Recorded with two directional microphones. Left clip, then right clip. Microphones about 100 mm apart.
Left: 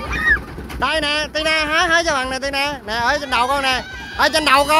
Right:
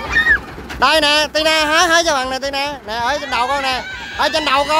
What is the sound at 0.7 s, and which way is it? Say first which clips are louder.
Speech: right 6 dB; 55° right (ahead or behind).